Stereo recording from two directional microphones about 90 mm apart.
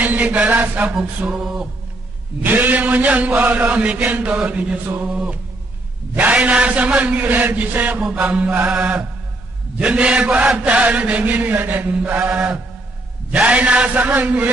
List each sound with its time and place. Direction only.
0.0 s chant: 20° right (ahead or behind)
1.2 s music: 5° right (ahead or behind)
2.4 s chant: 20° right (ahead or behind)